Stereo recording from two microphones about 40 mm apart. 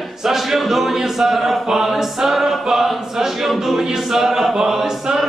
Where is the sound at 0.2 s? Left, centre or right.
Centre.